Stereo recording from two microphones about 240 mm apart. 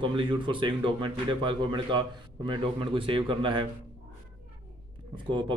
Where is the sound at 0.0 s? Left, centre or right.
Centre.